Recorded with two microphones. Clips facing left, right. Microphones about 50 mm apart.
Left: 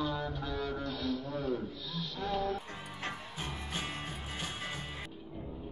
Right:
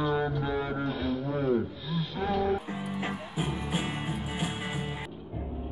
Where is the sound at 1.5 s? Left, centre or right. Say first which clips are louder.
Right 8 dB; right.